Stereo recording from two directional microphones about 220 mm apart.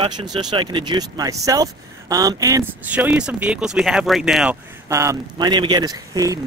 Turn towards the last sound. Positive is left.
turn(degrees=-15)  # may be behind; listen again after turning